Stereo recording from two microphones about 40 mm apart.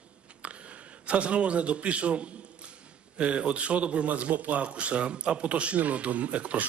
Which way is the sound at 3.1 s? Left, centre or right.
Right.